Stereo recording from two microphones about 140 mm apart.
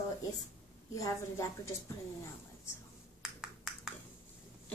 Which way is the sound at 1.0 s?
20° left (ahead or behind).